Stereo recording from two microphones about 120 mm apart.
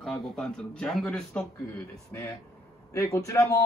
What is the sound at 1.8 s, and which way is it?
A man's voice, 25° left (ahead or behind).